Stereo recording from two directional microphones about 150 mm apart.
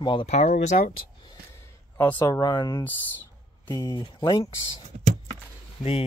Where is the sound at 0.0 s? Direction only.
35° left (ahead or behind).